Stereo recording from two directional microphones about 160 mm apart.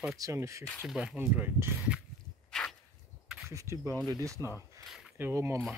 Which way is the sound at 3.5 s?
20° right (ahead or behind).